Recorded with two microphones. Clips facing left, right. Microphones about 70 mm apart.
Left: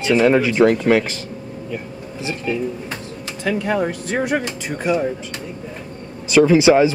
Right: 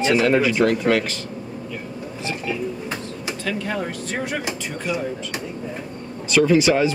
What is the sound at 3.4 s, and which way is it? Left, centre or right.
Speech, left.